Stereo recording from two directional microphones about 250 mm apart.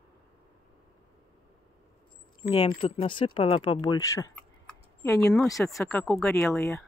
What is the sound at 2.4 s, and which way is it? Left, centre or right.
Speech, left.